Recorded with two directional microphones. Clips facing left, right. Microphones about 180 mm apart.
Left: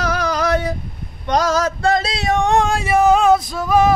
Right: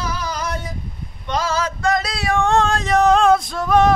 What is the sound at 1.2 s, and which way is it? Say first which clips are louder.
Female singing: left 5 dB; 45° left (ahead or behind).